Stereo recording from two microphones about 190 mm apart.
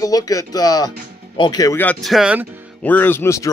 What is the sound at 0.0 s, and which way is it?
Speech, 20° left (ahead or behind).